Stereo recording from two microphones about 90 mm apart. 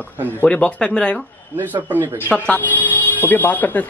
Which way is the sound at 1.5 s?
20° right (ahead or behind).